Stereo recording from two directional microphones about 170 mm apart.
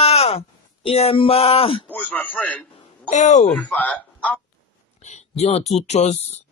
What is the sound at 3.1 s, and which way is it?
Speech, 45° left (ahead or behind).